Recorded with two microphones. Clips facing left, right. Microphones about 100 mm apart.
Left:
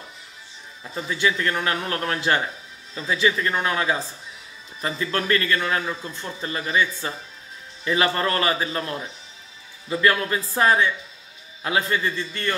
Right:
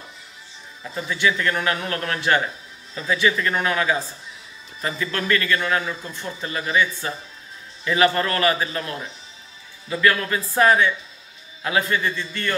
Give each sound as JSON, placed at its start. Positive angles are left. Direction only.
{"t": 1.0, "sound": "a man's voice", "side_deg": 35}
{"t": 9.9, "sound": "a man's voice", "side_deg": 30}